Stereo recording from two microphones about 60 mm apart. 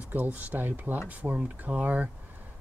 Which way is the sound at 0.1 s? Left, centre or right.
Right.